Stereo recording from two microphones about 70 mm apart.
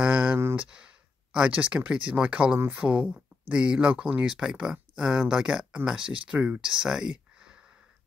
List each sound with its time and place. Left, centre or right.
0.0 s speech: centre